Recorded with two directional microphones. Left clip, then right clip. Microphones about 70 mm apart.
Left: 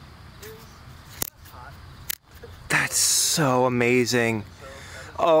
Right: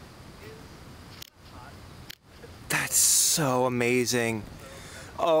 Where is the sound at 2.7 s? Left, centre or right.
Centre.